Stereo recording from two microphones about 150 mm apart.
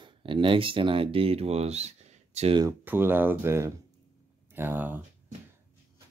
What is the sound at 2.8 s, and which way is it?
Speech, 15° right (ahead or behind).